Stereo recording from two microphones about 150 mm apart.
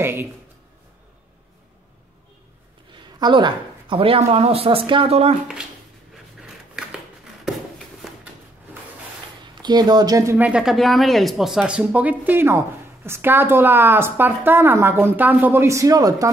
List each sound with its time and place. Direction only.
0.0 s speech: 15° right (ahead or behind)
2.9 s speech: 30° right (ahead or behind)
9.6 s speech: 30° right (ahead or behind)